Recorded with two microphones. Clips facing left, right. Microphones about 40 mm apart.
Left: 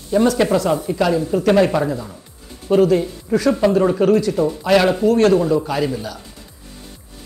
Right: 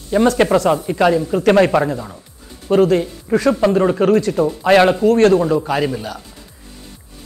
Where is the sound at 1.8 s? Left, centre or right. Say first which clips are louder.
Right 2 dB; right.